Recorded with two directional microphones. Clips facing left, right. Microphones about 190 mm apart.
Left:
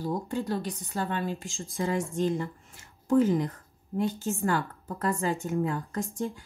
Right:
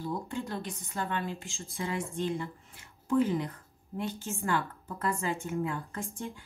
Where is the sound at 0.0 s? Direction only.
35° left (ahead or behind).